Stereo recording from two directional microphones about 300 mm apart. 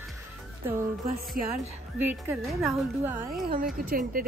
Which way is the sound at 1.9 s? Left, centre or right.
Centre.